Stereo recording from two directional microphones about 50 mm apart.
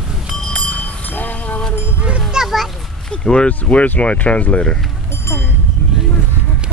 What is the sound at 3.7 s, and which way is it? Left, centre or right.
Speech, left.